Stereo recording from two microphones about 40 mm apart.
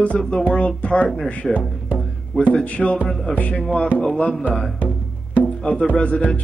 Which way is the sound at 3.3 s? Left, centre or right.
Left.